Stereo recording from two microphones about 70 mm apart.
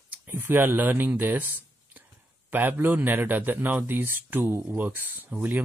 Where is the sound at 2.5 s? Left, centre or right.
Right.